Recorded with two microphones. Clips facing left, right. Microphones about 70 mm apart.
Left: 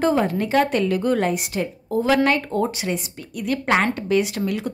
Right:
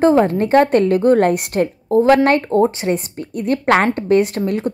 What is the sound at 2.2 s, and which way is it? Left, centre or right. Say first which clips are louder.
A woman's voice: right 7 dB; right.